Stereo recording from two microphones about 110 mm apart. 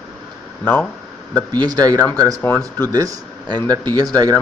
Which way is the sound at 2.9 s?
35° right (ahead or behind).